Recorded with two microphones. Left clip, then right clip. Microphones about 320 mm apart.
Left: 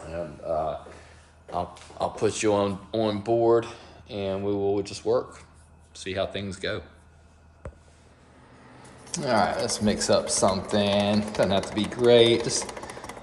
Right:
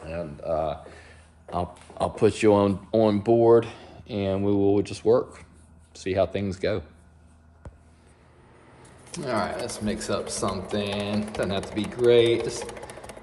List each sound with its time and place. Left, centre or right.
0.1 s a sound: right
1.5 s speech: right
9.1 s speech: centre